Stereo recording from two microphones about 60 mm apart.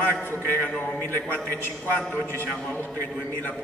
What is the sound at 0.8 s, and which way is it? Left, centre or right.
Speech, left.